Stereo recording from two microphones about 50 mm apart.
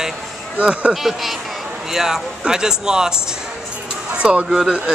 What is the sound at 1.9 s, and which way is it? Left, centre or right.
Speech, centre.